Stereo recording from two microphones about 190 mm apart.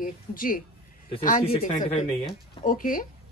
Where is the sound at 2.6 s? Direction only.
45° left (ahead or behind).